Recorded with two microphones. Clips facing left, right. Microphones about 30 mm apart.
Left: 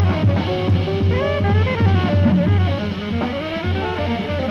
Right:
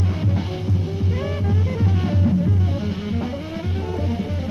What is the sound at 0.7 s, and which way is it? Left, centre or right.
Music, left.